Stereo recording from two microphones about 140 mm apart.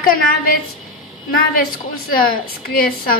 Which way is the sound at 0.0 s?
90° left.